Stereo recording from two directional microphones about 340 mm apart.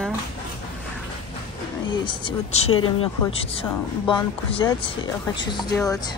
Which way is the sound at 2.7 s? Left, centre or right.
Left.